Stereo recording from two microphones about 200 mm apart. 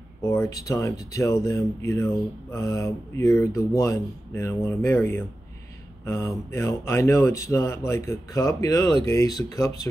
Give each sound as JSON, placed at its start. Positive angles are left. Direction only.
{"t": 0.2, "sound": "speech", "side_deg": 15}